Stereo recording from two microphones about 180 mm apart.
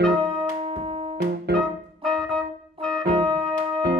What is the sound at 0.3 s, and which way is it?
Music, 30° right (ahead or behind).